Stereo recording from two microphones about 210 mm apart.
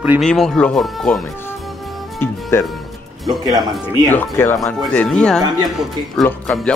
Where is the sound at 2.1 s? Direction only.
10° left (ahead or behind).